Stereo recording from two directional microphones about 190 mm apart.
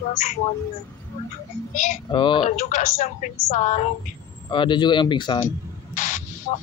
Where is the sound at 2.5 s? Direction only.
40° left (ahead or behind).